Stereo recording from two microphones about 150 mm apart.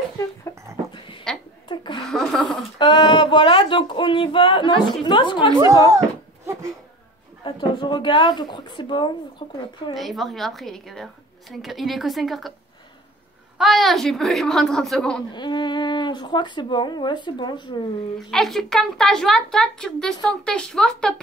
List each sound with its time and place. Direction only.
0.5 s dog: 30° left (ahead or behind)
1.7 s a sound: 30° left (ahead or behind)
2.0 s a sound: 5° left (ahead or behind)
2.8 s speech: 30° left (ahead or behind)
5.6 s a sound: 20° right (ahead or behind)
7.4 s speech: 30° left (ahead or behind)
9.9 s speech: centre (ahead or behind)
13.6 s speech: centre (ahead or behind)
15.3 s speech: 30° left (ahead or behind)
18.3 s speech: centre (ahead or behind)